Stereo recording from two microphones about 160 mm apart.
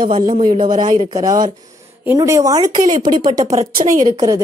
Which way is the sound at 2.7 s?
40° right (ahead or behind).